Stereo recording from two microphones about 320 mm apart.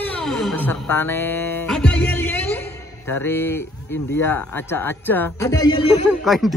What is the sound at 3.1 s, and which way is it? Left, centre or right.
A man's voice, centre.